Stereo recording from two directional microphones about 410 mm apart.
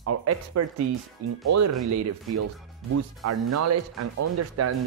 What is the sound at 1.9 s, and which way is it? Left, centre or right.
Speech, right.